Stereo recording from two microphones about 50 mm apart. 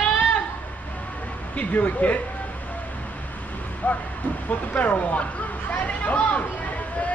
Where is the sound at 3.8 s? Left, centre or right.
Left.